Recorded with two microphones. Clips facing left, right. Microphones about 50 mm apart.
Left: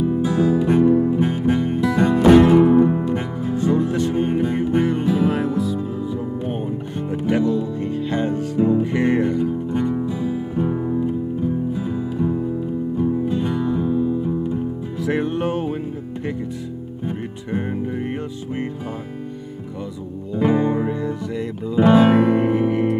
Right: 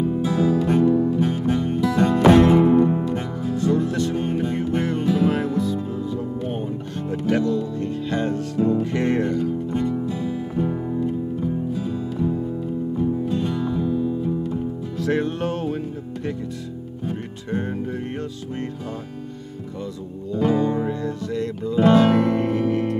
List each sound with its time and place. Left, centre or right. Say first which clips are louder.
0.0 s music: left 2 dB; centre
2.5 s music: left 2 dB; centre
3.1 s music: left 2 dB; left
5.3 s music: left 1 dB; centre
20.3 s music: left 2 dB; left